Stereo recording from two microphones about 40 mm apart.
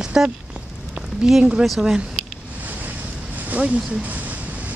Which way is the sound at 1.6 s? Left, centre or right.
Centre.